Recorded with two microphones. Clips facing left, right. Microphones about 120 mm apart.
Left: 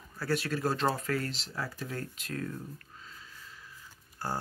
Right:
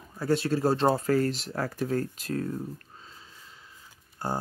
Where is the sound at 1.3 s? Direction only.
50° right (ahead or behind).